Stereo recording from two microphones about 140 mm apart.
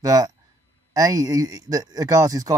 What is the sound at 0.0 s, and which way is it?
Speech, 25° right (ahead or behind).